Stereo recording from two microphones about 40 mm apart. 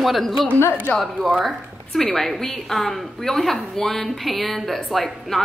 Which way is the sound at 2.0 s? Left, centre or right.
Centre.